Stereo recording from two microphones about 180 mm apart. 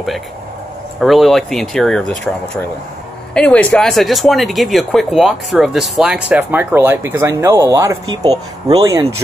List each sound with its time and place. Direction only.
0.9 s speech: centre (ahead or behind); by 9.0 s 20° right (ahead or behind)